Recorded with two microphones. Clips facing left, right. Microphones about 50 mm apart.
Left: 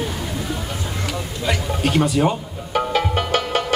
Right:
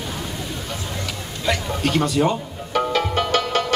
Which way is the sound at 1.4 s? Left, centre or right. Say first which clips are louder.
Even; centre.